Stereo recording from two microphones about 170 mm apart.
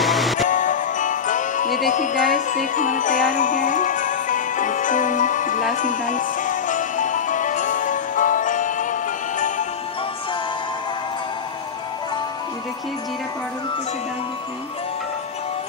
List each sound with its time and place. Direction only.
0.0 s music: centre (ahead or behind)
0.5 s music: 50° left (ahead or behind)